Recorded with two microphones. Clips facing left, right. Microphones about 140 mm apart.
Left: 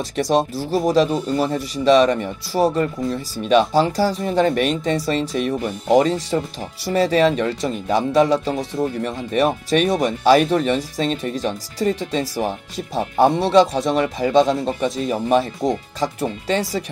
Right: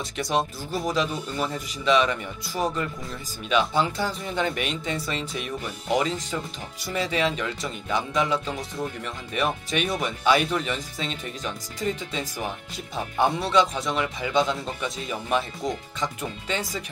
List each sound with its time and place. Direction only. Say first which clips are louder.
0.1 s speech: left 7 dB; 35° left (ahead or behind)
13.5 s speech: left 7 dB; 40° left (ahead or behind)